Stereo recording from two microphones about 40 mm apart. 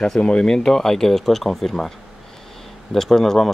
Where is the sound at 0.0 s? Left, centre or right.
Centre.